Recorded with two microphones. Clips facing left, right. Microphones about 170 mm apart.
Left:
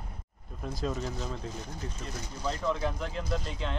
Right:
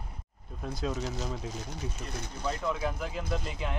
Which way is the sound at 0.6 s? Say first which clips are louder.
Even; centre (ahead or behind).